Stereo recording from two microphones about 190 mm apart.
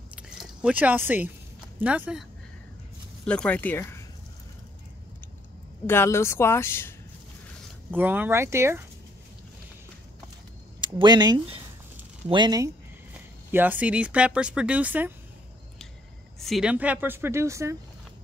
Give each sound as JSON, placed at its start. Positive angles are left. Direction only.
{"t": 0.1, "sound": "a sound", "side_deg": -5}
{"t": 1.8, "sound": "speech", "side_deg": -10}
{"t": 3.3, "sound": "speech", "side_deg": 5}
{"t": 5.9, "sound": "speech", "side_deg": 15}
{"t": 7.9, "sound": "speech", "side_deg": -10}
{"t": 10.8, "sound": "speech", "side_deg": -25}
{"t": 16.3, "sound": "speech", "side_deg": 0}